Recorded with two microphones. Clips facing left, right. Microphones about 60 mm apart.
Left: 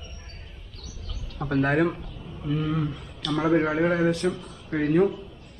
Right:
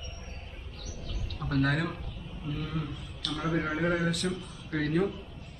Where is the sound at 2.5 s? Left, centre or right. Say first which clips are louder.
Left 10 dB; left.